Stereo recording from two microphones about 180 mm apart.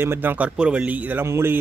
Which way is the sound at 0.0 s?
10° right (ahead or behind).